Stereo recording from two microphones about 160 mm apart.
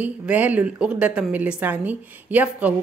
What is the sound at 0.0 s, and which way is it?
A woman's voice, 10° right (ahead or behind).